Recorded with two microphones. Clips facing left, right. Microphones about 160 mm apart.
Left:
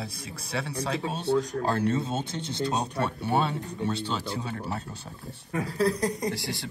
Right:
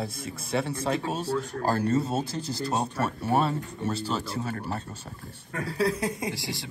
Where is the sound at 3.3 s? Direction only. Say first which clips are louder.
Right 3 dB; centre (ahead or behind).